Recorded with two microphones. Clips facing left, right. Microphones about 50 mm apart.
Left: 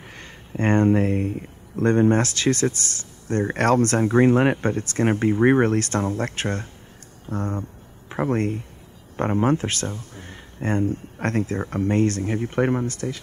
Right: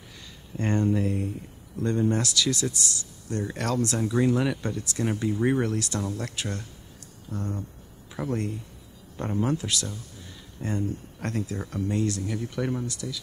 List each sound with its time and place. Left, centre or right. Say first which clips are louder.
0.0 s speech: left 6 dB; left